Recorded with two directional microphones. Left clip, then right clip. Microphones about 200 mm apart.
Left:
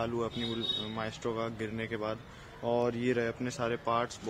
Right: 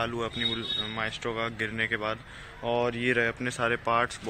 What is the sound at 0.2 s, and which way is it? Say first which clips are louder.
Speech: right 5 dB; 5° left (ahead or behind).